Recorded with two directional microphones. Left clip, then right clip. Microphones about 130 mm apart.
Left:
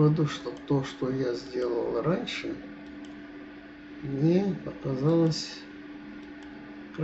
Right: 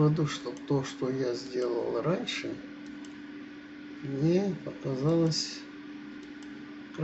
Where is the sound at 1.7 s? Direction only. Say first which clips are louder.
Left 3 dB; 35° right (ahead or behind).